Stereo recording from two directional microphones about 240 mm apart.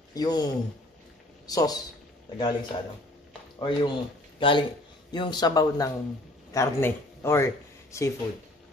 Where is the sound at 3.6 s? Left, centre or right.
Centre.